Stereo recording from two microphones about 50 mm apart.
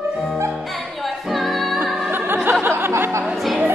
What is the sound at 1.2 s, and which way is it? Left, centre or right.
Music, centre.